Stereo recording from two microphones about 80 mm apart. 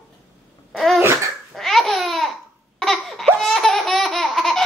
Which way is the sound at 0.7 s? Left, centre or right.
Centre.